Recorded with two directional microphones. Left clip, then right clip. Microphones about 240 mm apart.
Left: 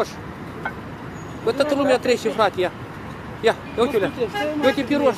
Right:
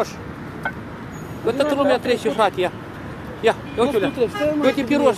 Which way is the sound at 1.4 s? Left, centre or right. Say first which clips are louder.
Right 1 dB; centre.